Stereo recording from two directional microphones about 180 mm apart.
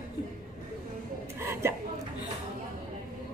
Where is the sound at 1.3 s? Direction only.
15° right (ahead or behind).